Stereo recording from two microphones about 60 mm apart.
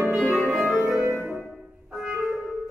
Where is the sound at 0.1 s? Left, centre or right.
Centre.